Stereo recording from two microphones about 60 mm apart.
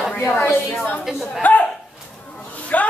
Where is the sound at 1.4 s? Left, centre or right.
Left.